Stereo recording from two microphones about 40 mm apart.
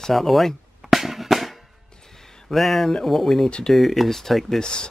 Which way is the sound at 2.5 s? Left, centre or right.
Centre.